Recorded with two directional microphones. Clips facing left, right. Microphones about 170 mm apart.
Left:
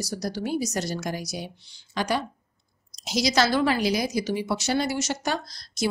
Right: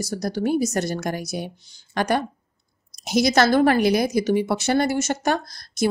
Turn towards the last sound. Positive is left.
turn(degrees=-55)  # may be behind; listen again after turning